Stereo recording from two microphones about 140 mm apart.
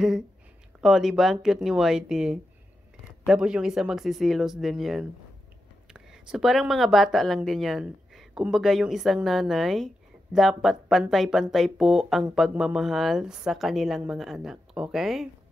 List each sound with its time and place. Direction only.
0.7 s speech: 5° right (ahead or behind)